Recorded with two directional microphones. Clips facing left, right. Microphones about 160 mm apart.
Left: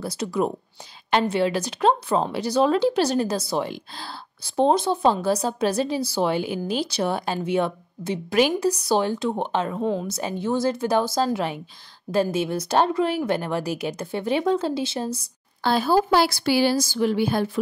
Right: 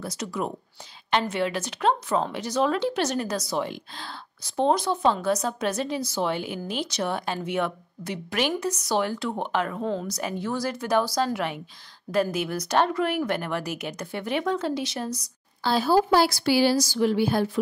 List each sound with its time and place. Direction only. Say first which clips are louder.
0.0 s a woman's voice: left 6 dB; 30° left (ahead or behind)
15.6 s speech: left 1 dB; 60° left (ahead or behind)